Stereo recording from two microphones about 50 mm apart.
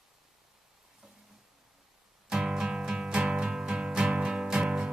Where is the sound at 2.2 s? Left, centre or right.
Centre.